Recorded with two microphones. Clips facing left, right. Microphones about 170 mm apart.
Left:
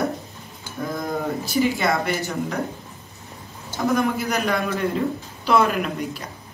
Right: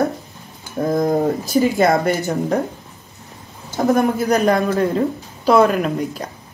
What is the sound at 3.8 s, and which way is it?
A woman's voice, 40° right (ahead or behind).